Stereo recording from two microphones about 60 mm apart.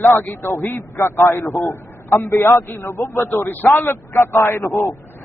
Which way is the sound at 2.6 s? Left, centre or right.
Left.